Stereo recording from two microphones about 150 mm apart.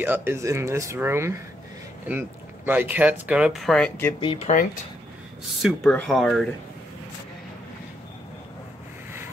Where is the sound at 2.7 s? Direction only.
10° right (ahead or behind).